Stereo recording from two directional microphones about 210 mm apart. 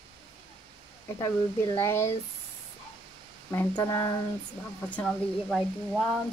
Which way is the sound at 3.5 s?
15° left (ahead or behind).